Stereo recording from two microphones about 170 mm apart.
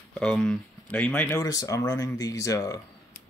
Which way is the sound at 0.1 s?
5° left (ahead or behind).